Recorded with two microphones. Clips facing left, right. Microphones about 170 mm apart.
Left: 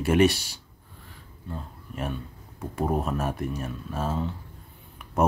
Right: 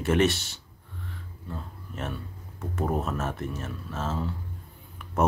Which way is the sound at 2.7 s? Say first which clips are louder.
Left 2 dB; 10° left (ahead or behind).